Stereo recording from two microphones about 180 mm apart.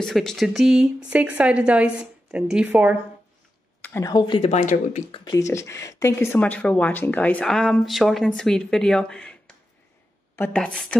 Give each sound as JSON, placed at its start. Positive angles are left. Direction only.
{"t": 0.0, "sound": "a woman's voice", "side_deg": 0}
{"t": 3.8, "sound": "a sound", "side_deg": 10}
{"t": 4.1, "sound": "speech", "side_deg": 25}
{"t": 4.4, "sound": "speech", "side_deg": 40}
{"t": 5.2, "sound": "speech", "side_deg": 15}